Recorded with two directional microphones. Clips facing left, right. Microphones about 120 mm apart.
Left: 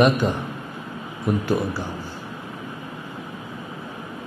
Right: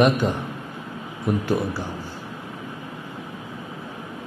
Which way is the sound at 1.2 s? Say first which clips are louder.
Left 1 dB; 30° left (ahead or behind).